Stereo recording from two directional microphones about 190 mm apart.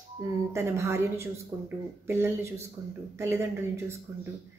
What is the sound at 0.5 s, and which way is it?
Speech, 15° right (ahead or behind).